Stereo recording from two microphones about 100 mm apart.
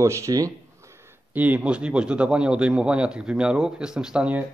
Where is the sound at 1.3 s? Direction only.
15° right (ahead or behind).